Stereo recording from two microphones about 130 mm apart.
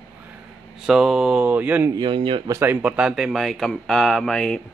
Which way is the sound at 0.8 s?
5° right (ahead or behind).